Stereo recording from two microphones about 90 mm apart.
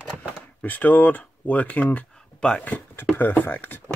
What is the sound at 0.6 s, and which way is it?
Speech, 20° left (ahead or behind).